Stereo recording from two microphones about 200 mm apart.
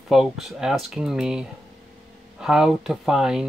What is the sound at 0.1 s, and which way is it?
Speech, centre (ahead or behind).